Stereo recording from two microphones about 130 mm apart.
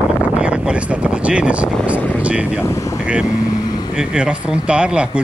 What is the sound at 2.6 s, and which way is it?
Speech, 25° left (ahead or behind).